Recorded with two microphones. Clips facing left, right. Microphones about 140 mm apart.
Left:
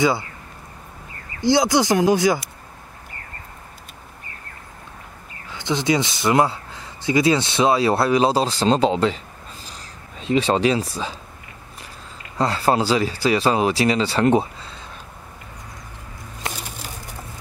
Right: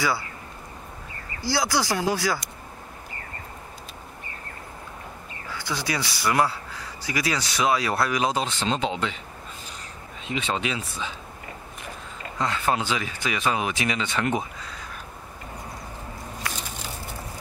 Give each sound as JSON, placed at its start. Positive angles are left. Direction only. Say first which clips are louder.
{"t": 1.4, "sound": "speech", "louder": "left 8 dB", "side_deg": 20}
{"t": 5.5, "sound": "speech", "louder": "left 9 dB", "side_deg": 20}
{"t": 10.2, "sound": "speech", "louder": "left 10 dB", "side_deg": 35}
{"t": 12.4, "sound": "speech", "louder": "left 6 dB", "side_deg": 35}